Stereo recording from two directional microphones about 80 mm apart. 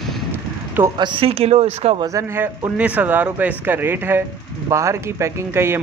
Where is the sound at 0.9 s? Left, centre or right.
Right.